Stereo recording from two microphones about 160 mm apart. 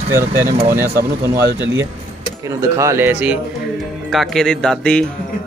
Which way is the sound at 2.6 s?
20° right (ahead or behind).